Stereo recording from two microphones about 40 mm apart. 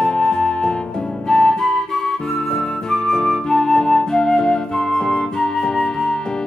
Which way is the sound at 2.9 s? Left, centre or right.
Centre.